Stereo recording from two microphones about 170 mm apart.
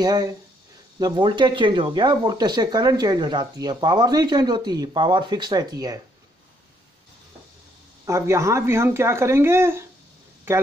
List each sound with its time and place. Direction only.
0.0 s speech: 25° right (ahead or behind)
8.0 s speech: 15° right (ahead or behind)